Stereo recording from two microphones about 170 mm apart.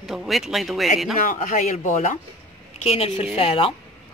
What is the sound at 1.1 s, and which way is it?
Speech, 50° left (ahead or behind).